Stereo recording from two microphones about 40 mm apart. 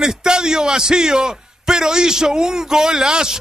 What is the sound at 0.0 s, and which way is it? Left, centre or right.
A man's voice, centre.